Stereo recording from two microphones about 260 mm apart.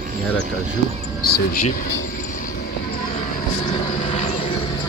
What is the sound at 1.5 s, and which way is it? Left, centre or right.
Speech, left.